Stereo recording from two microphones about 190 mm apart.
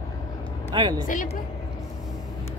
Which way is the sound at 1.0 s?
45° left (ahead or behind).